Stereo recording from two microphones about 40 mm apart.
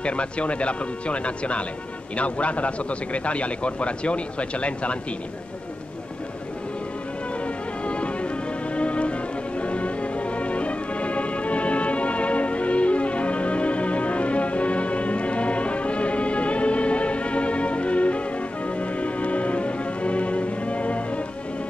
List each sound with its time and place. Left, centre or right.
0.0 s speech: left
7.4 s music: left